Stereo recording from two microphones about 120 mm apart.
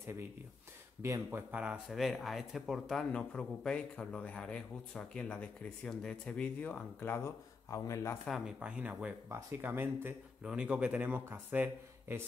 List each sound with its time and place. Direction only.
0.0 s speech: 25° right (ahead or behind)
1.5 s speech: 10° right (ahead or behind); by 8.2 s 25° left (ahead or behind)
8.3 s speech: 5° right (ahead or behind)